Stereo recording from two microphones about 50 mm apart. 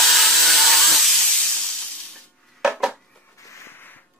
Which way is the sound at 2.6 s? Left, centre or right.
Centre.